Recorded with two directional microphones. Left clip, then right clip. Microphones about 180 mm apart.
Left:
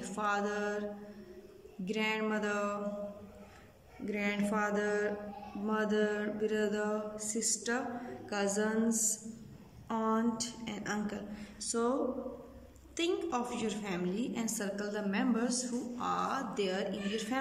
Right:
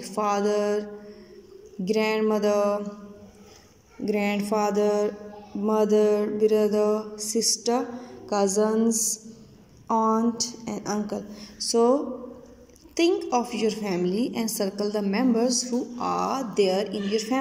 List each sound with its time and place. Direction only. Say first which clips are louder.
0.0 s a woman's voice: right 9 dB; 25° right (ahead or behind)
1.9 s a woman's voice: right 11 dB; 25° right (ahead or behind)
4.0 s a woman's voice: right 9 dB; 30° right (ahead or behind)